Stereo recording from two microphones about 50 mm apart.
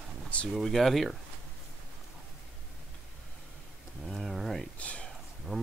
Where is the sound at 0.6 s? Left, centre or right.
Centre.